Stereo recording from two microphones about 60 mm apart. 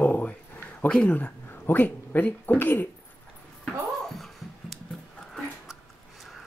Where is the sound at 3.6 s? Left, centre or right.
Centre.